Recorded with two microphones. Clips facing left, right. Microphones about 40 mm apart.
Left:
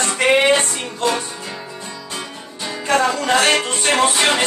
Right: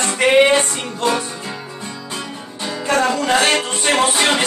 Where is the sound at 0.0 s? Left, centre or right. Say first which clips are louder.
Right 2 dB; centre.